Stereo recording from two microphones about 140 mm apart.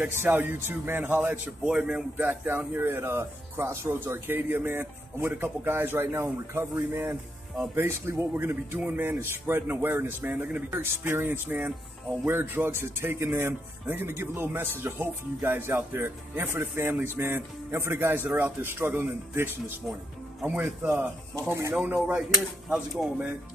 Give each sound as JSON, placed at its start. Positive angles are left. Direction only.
{"t": 0.0, "sound": "a man's voice", "side_deg": -15}
{"t": 21.4, "sound": "speech", "side_deg": -20}
{"t": 21.7, "sound": "a man's voice", "side_deg": -10}